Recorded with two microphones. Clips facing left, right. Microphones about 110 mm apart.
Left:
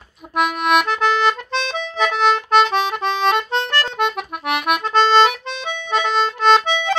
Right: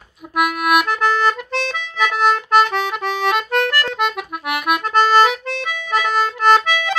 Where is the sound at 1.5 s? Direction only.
25° left (ahead or behind).